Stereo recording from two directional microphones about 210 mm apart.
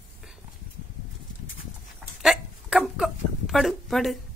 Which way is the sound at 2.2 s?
Centre (ahead or behind).